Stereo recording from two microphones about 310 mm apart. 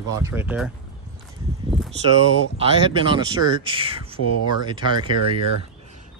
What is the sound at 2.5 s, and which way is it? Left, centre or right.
Speech, centre.